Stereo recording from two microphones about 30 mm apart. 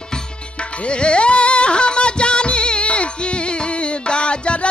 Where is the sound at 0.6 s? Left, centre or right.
Left.